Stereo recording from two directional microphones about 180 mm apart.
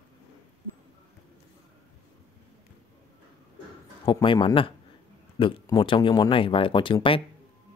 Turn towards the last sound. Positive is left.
turn(degrees=30)  # may be behind; listen again after turning